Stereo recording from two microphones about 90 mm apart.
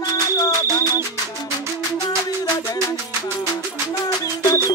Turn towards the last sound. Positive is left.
turn(degrees=45)  # may be behind; listen again after turning